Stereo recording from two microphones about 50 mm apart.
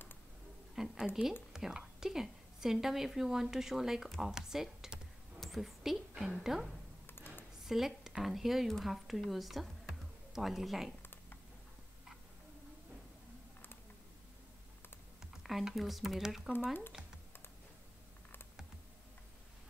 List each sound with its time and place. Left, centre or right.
0.7 s a woman's voice: centre
7.1 s a sound: left
7.6 s speech: centre
15.4 s speech: centre
17.0 s computer keyboard: centre